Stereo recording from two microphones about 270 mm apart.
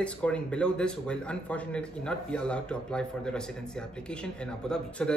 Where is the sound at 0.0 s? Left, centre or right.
Centre.